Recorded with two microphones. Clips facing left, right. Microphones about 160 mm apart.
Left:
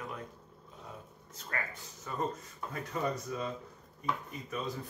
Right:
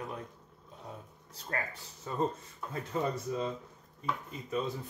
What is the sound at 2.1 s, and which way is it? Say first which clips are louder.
Speech: right 3 dB; 25° right (ahead or behind).